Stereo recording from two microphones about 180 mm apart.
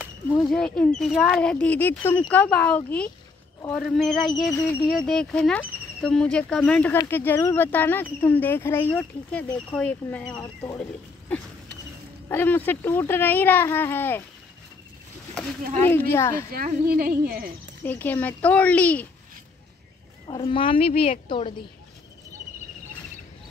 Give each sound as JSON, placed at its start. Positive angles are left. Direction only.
{"t": 0.0, "sound": "speech", "side_deg": 0}
{"t": 4.5, "sound": "speech", "side_deg": 15}
{"t": 4.8, "sound": "speech", "side_deg": 0}
{"t": 10.8, "sound": "a sound", "side_deg": 5}
{"t": 12.3, "sound": "speech", "side_deg": 10}
{"t": 15.7, "sound": "speech", "side_deg": 10}
{"t": 16.5, "sound": "speech", "side_deg": -55}
{"t": 17.8, "sound": "speech", "side_deg": 10}
{"t": 20.2, "sound": "speech", "side_deg": 30}